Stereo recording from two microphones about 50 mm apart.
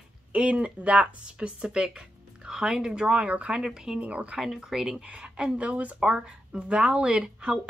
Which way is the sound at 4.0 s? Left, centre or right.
Right.